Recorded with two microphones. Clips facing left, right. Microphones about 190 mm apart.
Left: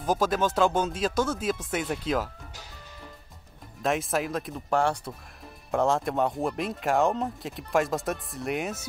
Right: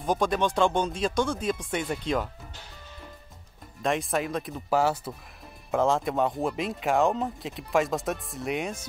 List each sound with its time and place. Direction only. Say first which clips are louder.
0.0 s speech: even; 5° left (ahead or behind)
3.8 s speech: even; centre (ahead or behind)